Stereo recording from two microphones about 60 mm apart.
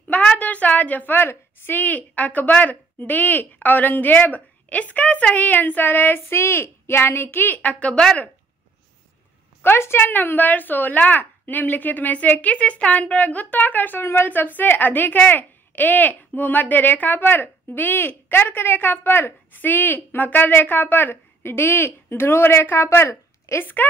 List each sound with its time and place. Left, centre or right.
0.1 s a woman's voice: left
7.2 s speech: left
7.5 s a woman's voice: left
9.6 s a woman's voice: left
23.6 s speech: left